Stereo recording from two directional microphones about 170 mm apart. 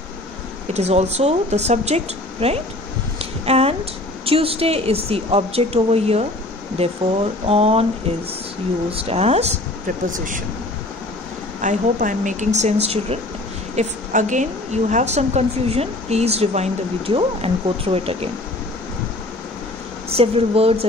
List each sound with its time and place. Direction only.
0.7 s a woman's voice: 40° right (ahead or behind)
3.2 s a sound: 35° right (ahead or behind)
4.3 s a woman's voice: 35° right (ahead or behind)
8.9 s a woman's voice: 35° right (ahead or behind)
10.1 s speech: 50° right (ahead or behind)
11.6 s a woman's voice: 50° right (ahead or behind)
20.1 s a woman's voice: 35° right (ahead or behind)